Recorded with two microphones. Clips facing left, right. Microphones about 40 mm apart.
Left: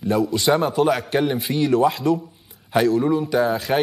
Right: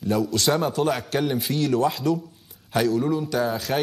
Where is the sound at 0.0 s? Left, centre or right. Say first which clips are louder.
Left 3 dB; centre.